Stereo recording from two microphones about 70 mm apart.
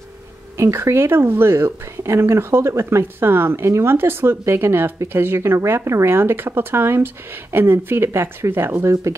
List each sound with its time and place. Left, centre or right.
0.6 s speech: right